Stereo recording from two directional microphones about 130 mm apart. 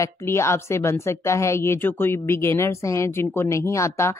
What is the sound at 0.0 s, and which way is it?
A woman's voice, 20° left (ahead or behind).